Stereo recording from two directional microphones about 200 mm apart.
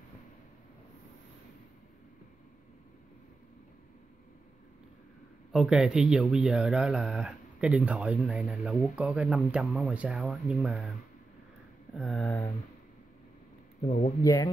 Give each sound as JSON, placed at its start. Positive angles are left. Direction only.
{"t": 5.5, "sound": "speech", "side_deg": 0}
{"t": 11.9, "sound": "speech", "side_deg": 0}
{"t": 13.8, "sound": "speech", "side_deg": 40}
{"t": 14.2, "sound": "speech", "side_deg": 15}